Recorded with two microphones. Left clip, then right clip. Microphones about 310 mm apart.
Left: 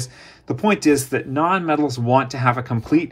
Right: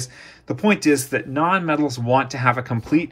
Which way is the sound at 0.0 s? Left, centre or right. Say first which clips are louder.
Even; centre.